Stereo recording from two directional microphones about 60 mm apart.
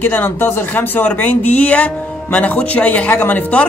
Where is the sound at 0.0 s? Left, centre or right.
Left.